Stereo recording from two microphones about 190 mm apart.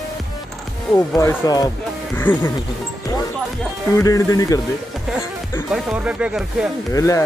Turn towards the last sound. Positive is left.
turn(degrees=15)  # may be behind; listen again after turning